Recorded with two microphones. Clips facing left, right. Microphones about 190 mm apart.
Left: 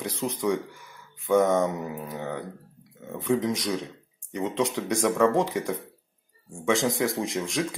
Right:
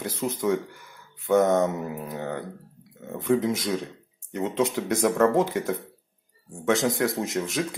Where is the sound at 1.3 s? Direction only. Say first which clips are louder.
Right 1 dB; centre (ahead or behind).